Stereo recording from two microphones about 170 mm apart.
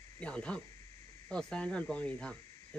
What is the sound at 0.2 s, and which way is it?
Speech, 5° left (ahead or behind).